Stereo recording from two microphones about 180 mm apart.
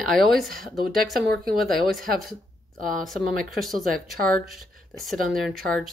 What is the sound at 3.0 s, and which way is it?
Speech, centre (ahead or behind).